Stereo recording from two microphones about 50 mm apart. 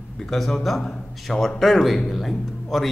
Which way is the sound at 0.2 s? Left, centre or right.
Centre.